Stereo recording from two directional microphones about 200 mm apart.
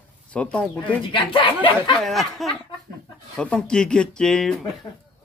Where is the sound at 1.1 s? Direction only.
25° left (ahead or behind).